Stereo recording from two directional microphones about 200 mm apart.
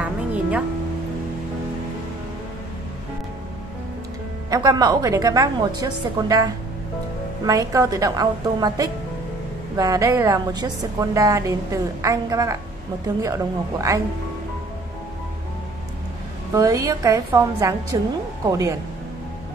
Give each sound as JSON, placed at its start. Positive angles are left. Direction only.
{"t": 0.0, "sound": "music", "side_deg": -5}
{"t": 4.5, "sound": "a woman's voice", "side_deg": -20}
{"t": 16.5, "sound": "a woman's voice", "side_deg": -15}